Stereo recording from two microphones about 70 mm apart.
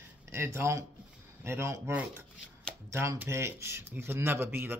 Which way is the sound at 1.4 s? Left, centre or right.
Right.